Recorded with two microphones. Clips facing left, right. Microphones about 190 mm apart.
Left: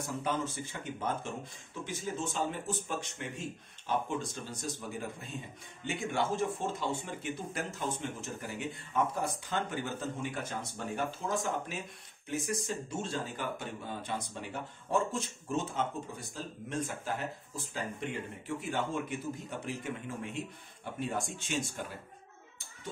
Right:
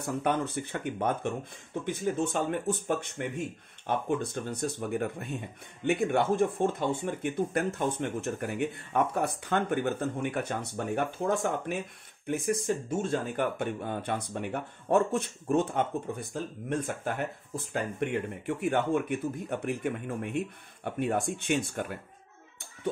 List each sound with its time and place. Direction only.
0.0 s speech: 60° right (ahead or behind)